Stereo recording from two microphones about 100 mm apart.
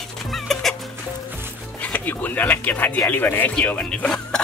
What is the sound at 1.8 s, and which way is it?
A man's voice, 15° left (ahead or behind).